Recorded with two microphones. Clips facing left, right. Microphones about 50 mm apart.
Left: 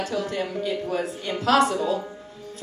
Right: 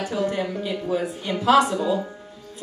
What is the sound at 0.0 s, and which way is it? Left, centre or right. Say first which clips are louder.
Speech: right 2 dB; centre.